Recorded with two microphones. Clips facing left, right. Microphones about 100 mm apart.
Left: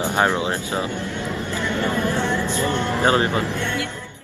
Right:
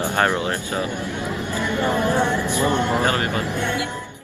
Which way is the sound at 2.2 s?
15° right (ahead or behind).